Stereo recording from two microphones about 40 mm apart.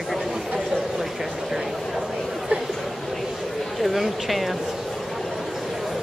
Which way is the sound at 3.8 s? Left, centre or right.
Centre.